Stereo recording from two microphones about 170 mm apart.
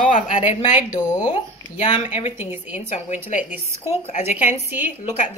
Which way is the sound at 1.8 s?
35° left (ahead or behind).